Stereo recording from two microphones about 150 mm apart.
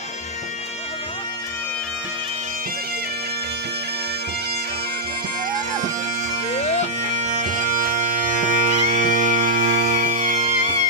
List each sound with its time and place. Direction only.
6.6 s bagpipes: 45° left (ahead or behind)
7.0 s bagpipes: 50° right (ahead or behind)